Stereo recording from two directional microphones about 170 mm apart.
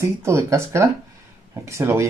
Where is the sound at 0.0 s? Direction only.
15° right (ahead or behind).